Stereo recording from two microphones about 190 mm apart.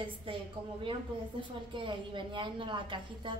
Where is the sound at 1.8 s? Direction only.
25° right (ahead or behind).